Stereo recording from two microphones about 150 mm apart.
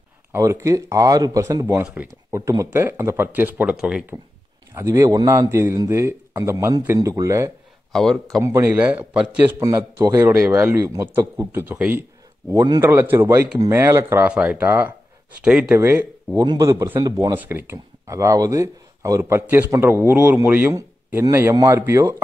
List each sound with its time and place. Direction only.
0.3 s a man's voice: 20° right (ahead or behind)
7.9 s speech: 5° left (ahead or behind)
8.4 s a man's voice: 20° right (ahead or behind)
8.7 s speech: 10° right (ahead or behind)
9.6 s speech: 20° right (ahead or behind)
12.8 s a man's voice: 15° right (ahead or behind)